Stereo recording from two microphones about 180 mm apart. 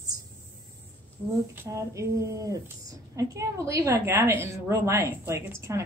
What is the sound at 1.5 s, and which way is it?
A woman's voice, 15° right (ahead or behind).